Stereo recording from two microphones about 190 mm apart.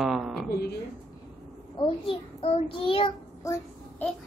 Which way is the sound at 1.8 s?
30° left (ahead or behind).